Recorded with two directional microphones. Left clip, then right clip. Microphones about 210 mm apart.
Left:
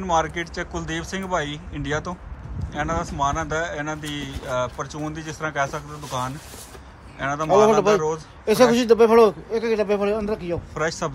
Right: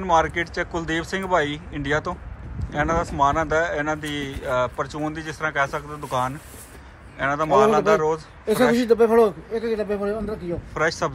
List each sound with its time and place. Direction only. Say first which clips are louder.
0.0 s speech: right 3 dB; 10° left (ahead or behind)
8.7 s a man's voice: even; 30° left (ahead or behind)
10.7 s speech: right 5 dB; 15° left (ahead or behind)